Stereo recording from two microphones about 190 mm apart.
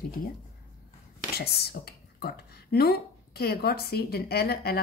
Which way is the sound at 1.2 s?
55° left (ahead or behind).